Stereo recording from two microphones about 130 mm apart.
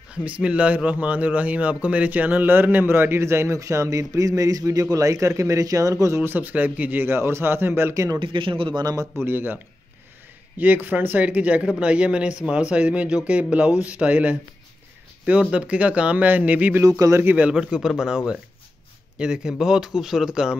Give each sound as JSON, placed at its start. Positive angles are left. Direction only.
{"t": 0.1, "sound": "a man's voice", "side_deg": -10}
{"t": 8.2, "sound": "speech", "side_deg": -40}
{"t": 9.2, "sound": "speech", "side_deg": -15}
{"t": 10.6, "sound": "speech", "side_deg": -15}
{"t": 16.8, "sound": "a man's voice", "side_deg": -25}